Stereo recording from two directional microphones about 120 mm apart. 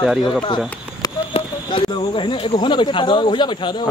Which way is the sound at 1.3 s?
45° left (ahead or behind).